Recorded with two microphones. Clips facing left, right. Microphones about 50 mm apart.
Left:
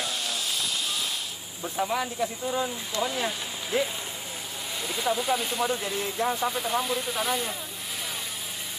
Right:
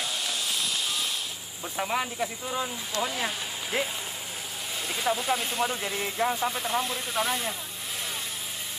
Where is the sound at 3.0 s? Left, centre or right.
Centre.